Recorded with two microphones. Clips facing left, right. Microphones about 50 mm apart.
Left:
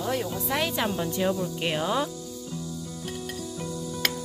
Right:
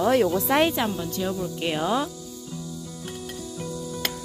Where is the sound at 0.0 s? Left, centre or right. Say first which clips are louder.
Right 9 dB; right.